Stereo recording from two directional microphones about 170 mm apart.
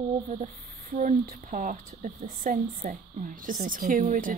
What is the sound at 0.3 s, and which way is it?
A woman's voice, 50° right (ahead or behind).